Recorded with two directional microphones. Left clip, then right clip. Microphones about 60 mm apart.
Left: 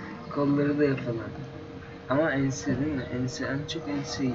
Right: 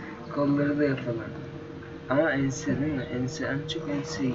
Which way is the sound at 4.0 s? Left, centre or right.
Centre.